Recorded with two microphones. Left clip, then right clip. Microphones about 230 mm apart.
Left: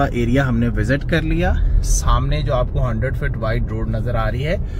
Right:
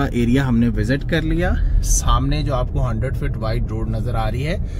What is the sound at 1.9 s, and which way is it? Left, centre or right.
Speech, right.